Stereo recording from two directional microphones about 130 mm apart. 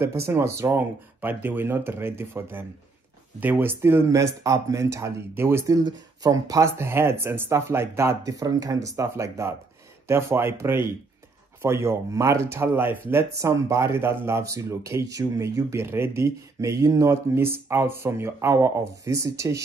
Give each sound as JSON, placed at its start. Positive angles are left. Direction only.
{"t": 0.0, "sound": "speech", "side_deg": -20}
{"t": 5.9, "sound": "speech", "side_deg": -30}